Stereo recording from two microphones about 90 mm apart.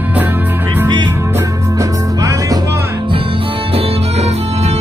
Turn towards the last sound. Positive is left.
turn(degrees=-90)